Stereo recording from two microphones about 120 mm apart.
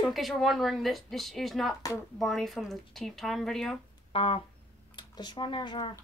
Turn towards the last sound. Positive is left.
turn(degrees=40)  # may be behind; listen again after turning